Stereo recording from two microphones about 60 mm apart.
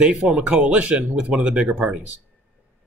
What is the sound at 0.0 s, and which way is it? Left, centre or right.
Speech, centre.